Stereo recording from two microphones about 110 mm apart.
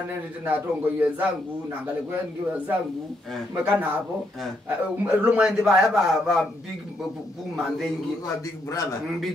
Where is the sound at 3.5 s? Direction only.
15° right (ahead or behind).